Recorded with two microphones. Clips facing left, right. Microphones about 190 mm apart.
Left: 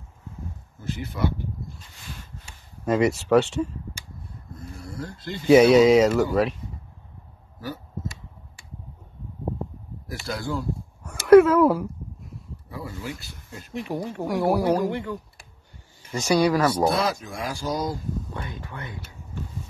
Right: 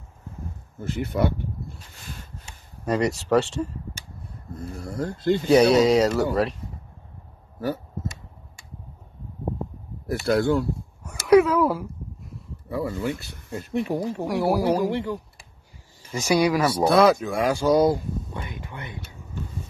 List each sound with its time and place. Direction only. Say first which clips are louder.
0.7 s speech: right 6 dB; 60° right (ahead or behind)
2.8 s speech: left 2 dB; centre (ahead or behind)
4.9 s speech: right 12 dB; 50° right (ahead or behind)
5.5 s speech: left 3 dB; centre (ahead or behind)
10.0 s speech: right 10 dB; 60° right (ahead or behind)
11.1 s a sound: left 3 dB; centre (ahead or behind)
12.6 s speech: right 8 dB; 60° right (ahead or behind)
13.9 s speech: right 3 dB; 25° right (ahead or behind)
14.2 s speech: left 1 dB; 5° right (ahead or behind)
14.9 s speech: right 2 dB; 35° right (ahead or behind)
16.1 s speech: even; 10° right (ahead or behind)
16.9 s speech: right 8 dB; 70° right (ahead or behind)
18.3 s speech: even; 15° right (ahead or behind)